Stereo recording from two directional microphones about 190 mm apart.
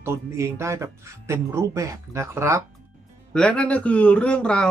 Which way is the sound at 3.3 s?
5° left (ahead or behind).